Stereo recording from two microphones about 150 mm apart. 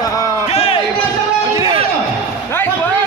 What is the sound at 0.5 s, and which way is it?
Music, 40° left (ahead or behind).